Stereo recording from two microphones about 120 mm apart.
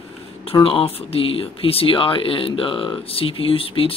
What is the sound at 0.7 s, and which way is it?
Speech, 55° left (ahead or behind).